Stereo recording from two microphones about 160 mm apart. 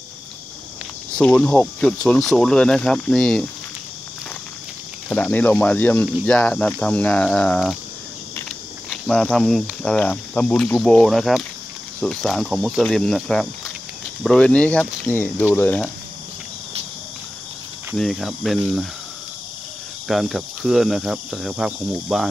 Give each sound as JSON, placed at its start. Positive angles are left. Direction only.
{"t": 1.1, "sound": "speech", "side_deg": 5}
{"t": 5.1, "sound": "speech", "side_deg": 10}
{"t": 8.9, "sound": "speech", "side_deg": 5}
{"t": 17.9, "sound": "speech", "side_deg": 0}
{"t": 20.1, "sound": "speech", "side_deg": 0}